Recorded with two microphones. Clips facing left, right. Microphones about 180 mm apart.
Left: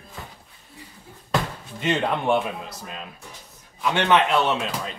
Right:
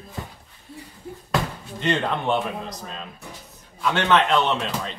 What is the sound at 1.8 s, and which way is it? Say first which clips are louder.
Speech: even; 10° left (ahead or behind).